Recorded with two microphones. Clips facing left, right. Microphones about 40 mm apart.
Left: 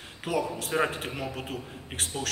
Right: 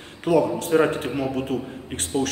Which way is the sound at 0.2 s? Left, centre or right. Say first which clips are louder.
Right 10 dB; centre.